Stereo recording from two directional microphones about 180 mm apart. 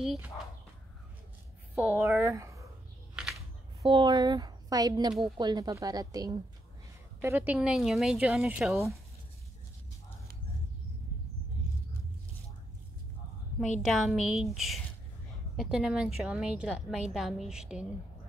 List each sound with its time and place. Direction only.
0.0 s a woman's voice: centre (ahead or behind)
1.8 s speech: 10° right (ahead or behind)
3.9 s a woman's voice: 25° right (ahead or behind); by 9.0 s centre (ahead or behind)
13.8 s a woman's voice: centre (ahead or behind)